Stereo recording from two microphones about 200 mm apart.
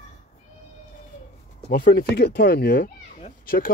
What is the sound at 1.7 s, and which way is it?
Speech, 50° left (ahead or behind).